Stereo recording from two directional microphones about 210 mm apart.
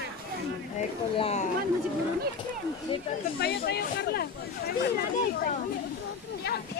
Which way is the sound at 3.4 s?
50° left (ahead or behind).